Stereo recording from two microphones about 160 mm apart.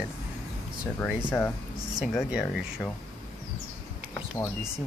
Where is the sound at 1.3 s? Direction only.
15° left (ahead or behind).